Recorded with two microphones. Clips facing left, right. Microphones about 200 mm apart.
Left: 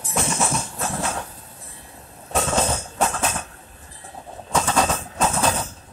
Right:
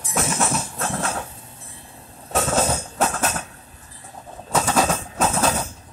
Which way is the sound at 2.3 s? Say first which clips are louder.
Right 1 dB; 5° right (ahead or behind).